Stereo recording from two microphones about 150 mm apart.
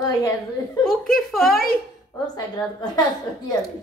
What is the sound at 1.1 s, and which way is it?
Speech, centre (ahead or behind).